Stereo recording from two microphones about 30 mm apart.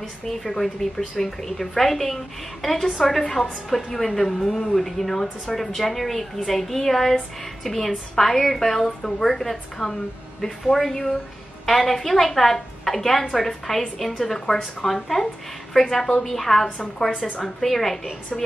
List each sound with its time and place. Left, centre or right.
0.4 s a woman's voice: centre
14.5 s speech: left
15.1 s speech: centre
15.7 s a woman's voice: centre
16.6 s a woman's voice: left
17.2 s a woman's voice: centre